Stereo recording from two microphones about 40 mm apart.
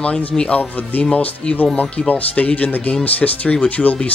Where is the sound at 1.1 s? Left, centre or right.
Left.